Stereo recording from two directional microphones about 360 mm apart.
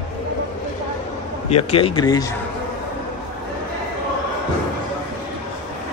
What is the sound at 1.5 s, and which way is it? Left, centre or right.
Speech, centre.